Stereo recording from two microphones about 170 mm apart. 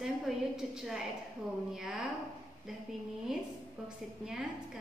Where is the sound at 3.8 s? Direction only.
5° right (ahead or behind).